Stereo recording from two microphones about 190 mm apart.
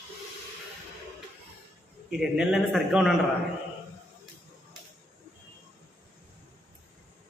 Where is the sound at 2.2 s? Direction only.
Centre (ahead or behind).